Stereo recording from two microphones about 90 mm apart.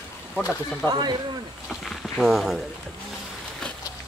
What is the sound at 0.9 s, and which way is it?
Speech, 50° right (ahead or behind).